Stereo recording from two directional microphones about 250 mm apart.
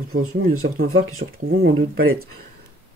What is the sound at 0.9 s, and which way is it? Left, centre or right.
Speech, right.